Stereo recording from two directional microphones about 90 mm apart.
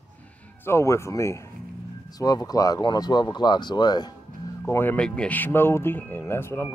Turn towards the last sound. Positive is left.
turn(degrees=25)  # may be behind; listen again after turning